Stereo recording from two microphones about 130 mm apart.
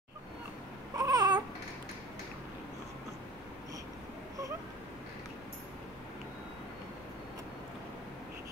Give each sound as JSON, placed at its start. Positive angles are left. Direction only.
{"t": 0.9, "sound": "babbling", "side_deg": -30}